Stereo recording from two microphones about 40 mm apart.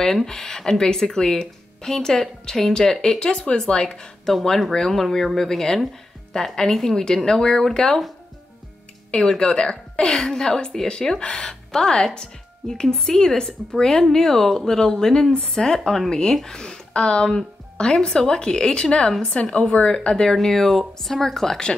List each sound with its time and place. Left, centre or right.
0.0 s a woman's voice: centre
3.2 s speech: left
4.3 s speech: centre
4.7 s a woman's voice: centre
9.4 s a woman's voice: centre
17.9 s speech: centre
19.4 s speech: left
20.3 s a woman's voice: centre